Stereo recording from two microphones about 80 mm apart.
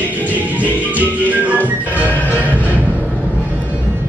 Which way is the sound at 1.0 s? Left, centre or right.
Centre.